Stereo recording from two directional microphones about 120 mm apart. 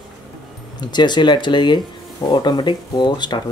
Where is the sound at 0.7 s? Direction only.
35° left (ahead or behind).